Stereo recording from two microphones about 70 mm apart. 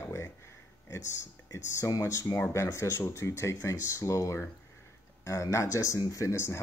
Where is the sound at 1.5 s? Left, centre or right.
Left.